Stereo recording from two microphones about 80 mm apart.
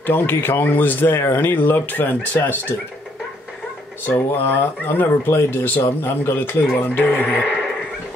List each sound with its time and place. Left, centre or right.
0.0 s speech: left
4.1 s speech: left
7.3 s a sound: centre